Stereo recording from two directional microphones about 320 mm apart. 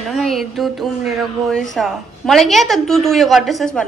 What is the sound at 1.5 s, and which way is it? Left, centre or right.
A woman's voice, centre.